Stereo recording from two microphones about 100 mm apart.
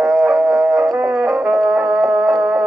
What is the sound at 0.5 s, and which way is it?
Howl, 25° right (ahead or behind).